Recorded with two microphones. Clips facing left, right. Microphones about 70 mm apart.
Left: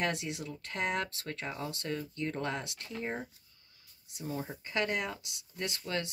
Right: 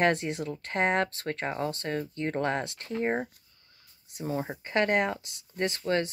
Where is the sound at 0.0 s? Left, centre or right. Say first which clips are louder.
Right 8 dB; right.